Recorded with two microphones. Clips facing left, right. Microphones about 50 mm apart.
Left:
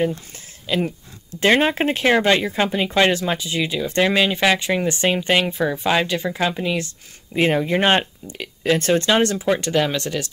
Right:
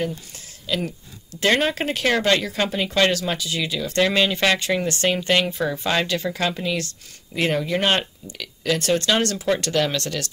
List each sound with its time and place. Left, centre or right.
0.7 s speech: left